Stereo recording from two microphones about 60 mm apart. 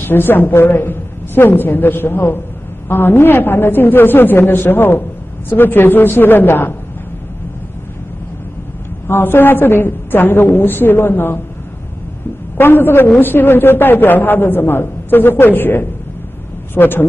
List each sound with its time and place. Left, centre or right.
0.0 s a man's voice: left
9.0 s a man's voice: left
12.5 s a man's voice: left